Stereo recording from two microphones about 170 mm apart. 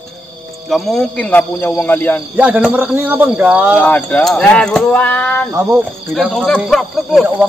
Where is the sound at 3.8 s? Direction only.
5° left (ahead or behind).